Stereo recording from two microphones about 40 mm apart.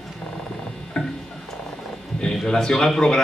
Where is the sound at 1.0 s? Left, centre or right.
Left.